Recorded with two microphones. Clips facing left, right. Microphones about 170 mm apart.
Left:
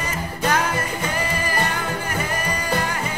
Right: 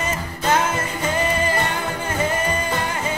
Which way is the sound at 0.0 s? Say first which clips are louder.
Right 1 dB; 25° right (ahead or behind).